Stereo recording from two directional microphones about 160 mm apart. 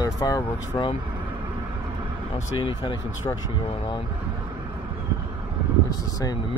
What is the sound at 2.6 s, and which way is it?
Speech, 30° left (ahead or behind).